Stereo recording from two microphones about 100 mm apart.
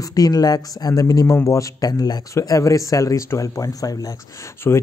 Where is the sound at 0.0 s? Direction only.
40° left (ahead or behind).